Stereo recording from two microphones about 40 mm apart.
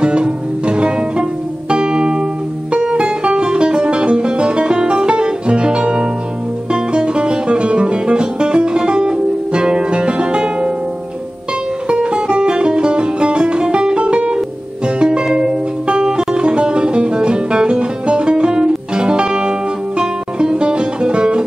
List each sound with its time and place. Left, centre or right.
0.0 s music: right
11.9 s music: right